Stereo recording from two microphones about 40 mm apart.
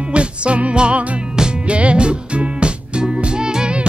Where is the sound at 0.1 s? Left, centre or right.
Right.